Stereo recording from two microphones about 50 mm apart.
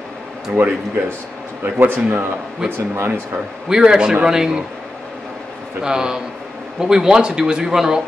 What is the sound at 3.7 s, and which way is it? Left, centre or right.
Speech, centre.